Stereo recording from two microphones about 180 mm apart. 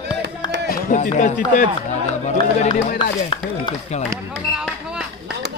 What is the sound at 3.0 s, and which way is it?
Speech, 30° left (ahead or behind).